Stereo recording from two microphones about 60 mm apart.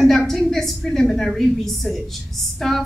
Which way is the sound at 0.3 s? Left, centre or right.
Centre.